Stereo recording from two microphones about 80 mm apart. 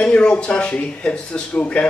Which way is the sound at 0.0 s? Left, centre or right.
Centre.